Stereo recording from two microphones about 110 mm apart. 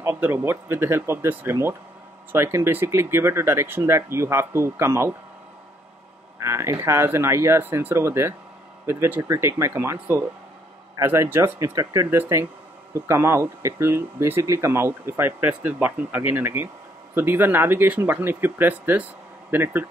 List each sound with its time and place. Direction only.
0.2 s speech: 20° right (ahead or behind)
6.4 s speech: 25° right (ahead or behind)